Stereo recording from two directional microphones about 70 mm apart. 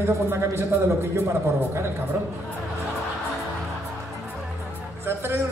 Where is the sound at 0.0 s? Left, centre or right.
Right.